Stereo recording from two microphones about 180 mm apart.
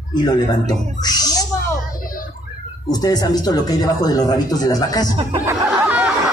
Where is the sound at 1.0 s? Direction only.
20° left (ahead or behind).